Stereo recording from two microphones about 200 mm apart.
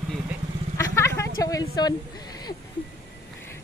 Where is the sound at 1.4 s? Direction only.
20° left (ahead or behind).